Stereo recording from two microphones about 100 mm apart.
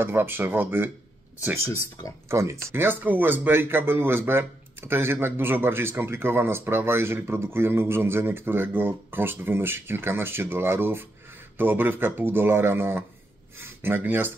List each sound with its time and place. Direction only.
0.0 s speech: 20° right (ahead or behind)